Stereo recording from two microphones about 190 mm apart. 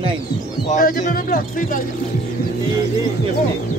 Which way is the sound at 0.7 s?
40° left (ahead or behind).